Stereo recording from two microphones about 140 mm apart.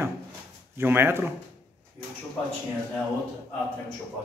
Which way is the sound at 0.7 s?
15° right (ahead or behind).